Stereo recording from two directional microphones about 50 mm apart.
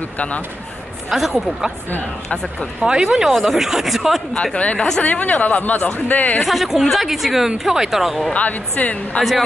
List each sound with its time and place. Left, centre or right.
1.1 s speech: centre
2.2 s speech: centre
3.0 s speech: centre
4.6 s speech: left
6.4 s speech: centre
8.3 s speech: left